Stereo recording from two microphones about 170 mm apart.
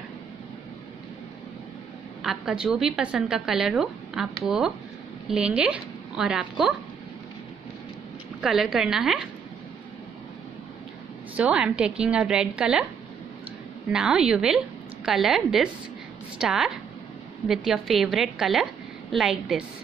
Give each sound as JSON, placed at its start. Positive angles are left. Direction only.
{"t": 2.2, "sound": "a woman's voice", "side_deg": -5}
{"t": 8.4, "sound": "a woman's voice", "side_deg": -5}
{"t": 11.3, "sound": "a woman's voice", "side_deg": -5}
{"t": 13.9, "sound": "a woman's voice", "side_deg": -5}